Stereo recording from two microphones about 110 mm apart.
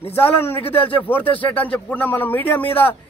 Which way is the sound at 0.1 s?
20° left (ahead or behind).